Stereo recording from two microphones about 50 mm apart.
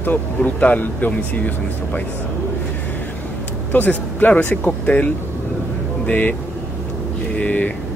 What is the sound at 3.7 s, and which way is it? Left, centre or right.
Speech, left.